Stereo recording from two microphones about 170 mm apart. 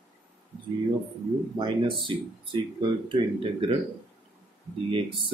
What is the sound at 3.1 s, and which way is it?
Speech, 30° right (ahead or behind).